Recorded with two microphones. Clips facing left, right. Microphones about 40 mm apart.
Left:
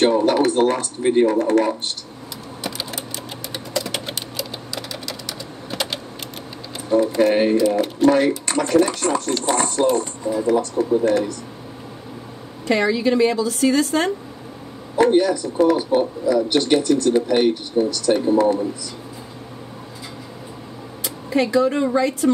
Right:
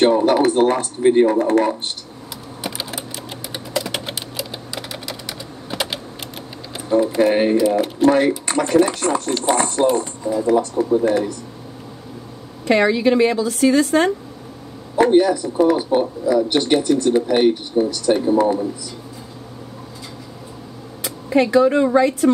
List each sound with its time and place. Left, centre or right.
0.0 s speech: centre
2.6 s typing: centre
6.9 s speech: centre
12.8 s a woman's voice: right
13.3 s speech: centre
21.3 s speech: centre
22.2 s a woman's voice: right